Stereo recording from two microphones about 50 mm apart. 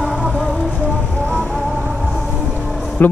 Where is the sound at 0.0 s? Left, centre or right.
Centre.